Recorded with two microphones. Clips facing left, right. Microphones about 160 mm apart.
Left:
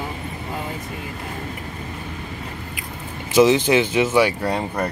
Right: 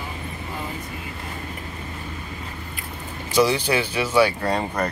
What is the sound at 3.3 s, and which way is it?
Speech, 20° left (ahead or behind).